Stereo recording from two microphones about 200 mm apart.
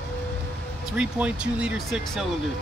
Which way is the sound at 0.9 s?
5° right (ahead or behind).